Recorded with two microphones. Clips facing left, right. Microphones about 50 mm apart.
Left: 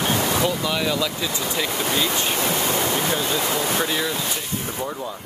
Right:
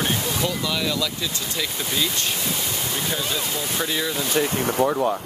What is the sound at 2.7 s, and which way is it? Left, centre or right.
Waterfall, left.